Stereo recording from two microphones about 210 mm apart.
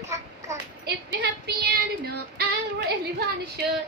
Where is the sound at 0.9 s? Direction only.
50° right (ahead or behind).